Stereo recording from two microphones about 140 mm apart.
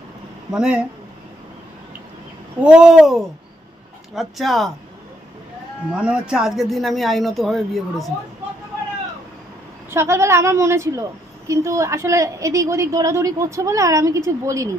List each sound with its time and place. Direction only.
0.5 s speech: 5° right (ahead or behind)
2.6 s speech: 5° right (ahead or behind)
5.9 s speech: 5° right (ahead or behind)
9.8 s a woman's voice: 20° right (ahead or behind)